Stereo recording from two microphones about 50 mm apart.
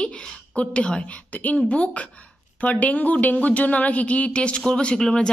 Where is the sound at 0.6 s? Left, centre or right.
Left.